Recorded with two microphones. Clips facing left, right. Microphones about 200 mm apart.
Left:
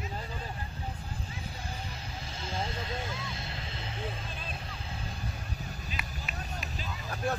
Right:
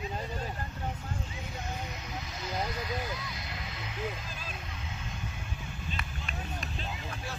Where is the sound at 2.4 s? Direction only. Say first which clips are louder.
Right 1 dB; 30° left (ahead or behind).